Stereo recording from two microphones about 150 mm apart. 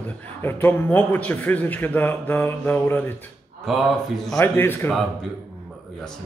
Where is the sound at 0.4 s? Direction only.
15° left (ahead or behind).